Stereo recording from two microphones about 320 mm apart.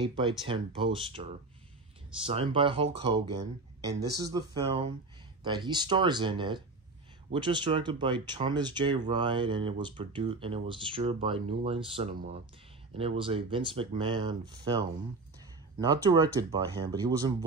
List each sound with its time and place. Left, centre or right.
0.0 s speech: centre
2.2 s speech: centre